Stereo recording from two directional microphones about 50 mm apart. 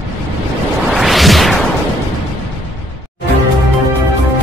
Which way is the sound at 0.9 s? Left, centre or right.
Centre.